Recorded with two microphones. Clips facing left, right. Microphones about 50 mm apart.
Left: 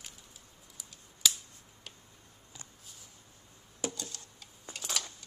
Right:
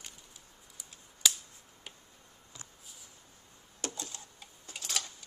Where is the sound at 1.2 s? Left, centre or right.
Centre.